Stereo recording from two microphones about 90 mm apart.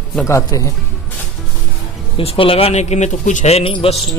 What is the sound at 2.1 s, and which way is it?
Speech, 85° left.